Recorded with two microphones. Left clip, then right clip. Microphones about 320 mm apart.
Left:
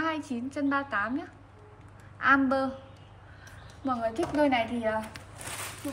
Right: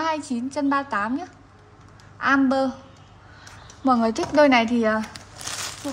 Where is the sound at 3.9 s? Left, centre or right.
Centre.